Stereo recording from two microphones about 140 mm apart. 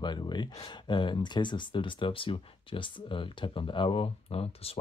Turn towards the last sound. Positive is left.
turn(degrees=45)  # may be behind; listen again after turning